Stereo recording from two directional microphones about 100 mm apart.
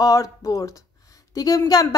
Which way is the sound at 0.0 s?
35° left (ahead or behind).